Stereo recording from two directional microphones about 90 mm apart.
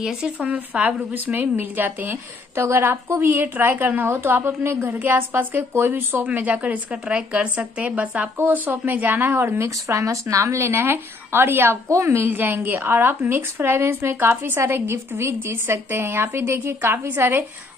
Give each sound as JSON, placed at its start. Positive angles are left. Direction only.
{"t": 0.0, "sound": "a woman's voice", "side_deg": -10}